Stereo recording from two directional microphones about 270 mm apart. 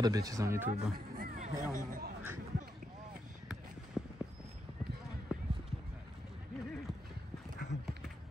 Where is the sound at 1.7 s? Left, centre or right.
Right.